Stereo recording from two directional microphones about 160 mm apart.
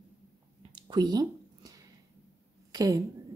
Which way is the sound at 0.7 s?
30° right (ahead or behind).